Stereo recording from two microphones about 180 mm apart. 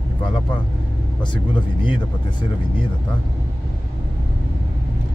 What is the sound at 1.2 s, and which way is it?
Speech, 25° left (ahead or behind).